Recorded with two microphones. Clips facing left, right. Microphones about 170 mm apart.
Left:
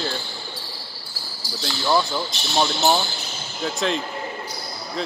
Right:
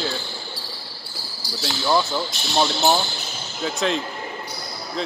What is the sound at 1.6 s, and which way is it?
Speech, centre (ahead or behind).